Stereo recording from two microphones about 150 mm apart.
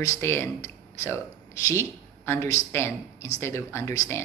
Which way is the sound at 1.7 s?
20° left (ahead or behind).